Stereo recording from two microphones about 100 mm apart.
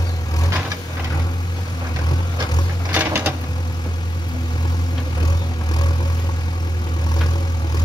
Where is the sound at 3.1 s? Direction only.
25° right (ahead or behind).